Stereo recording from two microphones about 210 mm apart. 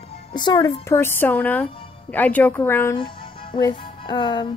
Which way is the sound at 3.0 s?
25° left (ahead or behind).